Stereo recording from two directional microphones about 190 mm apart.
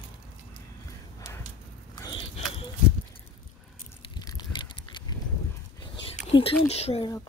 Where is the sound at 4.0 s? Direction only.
20° left (ahead or behind).